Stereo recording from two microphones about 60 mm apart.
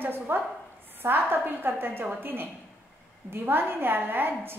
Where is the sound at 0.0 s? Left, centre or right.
Right.